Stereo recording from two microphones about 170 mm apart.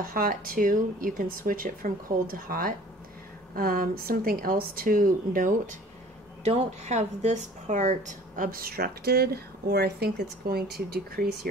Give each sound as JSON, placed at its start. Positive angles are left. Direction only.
{"t": 0.0, "sound": "speech", "side_deg": -55}
{"t": 6.4, "sound": "speech", "side_deg": -35}